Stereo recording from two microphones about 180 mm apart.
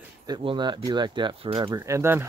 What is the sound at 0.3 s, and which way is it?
Speech, 25° right (ahead or behind).